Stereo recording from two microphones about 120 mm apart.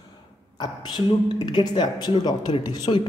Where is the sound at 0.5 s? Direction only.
35° left (ahead or behind).